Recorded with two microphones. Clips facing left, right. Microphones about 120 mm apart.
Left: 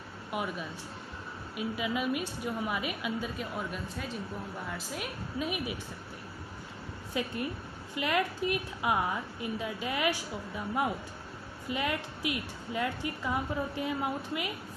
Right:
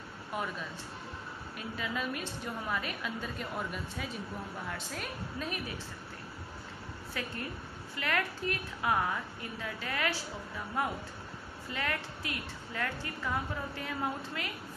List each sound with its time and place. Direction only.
0.3 s a woman's voice: 10° left (ahead or behind)
7.2 s a woman's voice: 20° left (ahead or behind)